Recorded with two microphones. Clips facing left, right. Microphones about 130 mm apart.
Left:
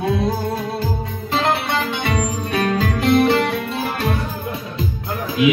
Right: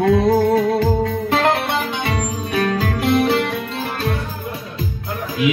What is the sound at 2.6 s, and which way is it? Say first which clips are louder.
Music: even; centre (ahead or behind).